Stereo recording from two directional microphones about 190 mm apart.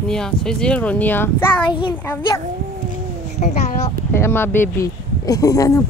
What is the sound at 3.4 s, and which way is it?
Speech, 35° left (ahead or behind).